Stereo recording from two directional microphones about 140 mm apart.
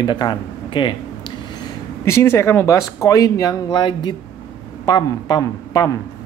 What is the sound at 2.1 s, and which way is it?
Speech, 20° left (ahead or behind).